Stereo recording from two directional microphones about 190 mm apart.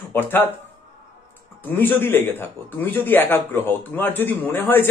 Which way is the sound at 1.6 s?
10° left (ahead or behind).